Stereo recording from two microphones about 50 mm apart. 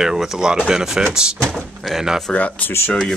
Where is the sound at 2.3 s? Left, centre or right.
Left.